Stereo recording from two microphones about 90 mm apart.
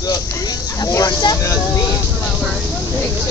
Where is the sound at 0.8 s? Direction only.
40° left (ahead or behind).